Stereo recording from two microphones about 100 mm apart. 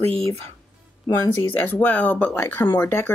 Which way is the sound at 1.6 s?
15° left (ahead or behind).